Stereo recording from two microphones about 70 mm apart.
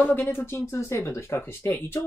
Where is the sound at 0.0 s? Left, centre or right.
Left.